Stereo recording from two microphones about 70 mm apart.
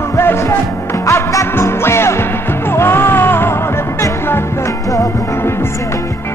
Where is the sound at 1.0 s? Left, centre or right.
Left.